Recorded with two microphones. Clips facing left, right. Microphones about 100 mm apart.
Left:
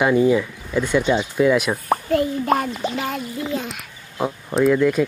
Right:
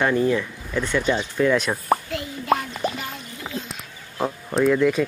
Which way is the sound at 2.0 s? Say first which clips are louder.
Left 11 dB; 45° left (ahead or behind).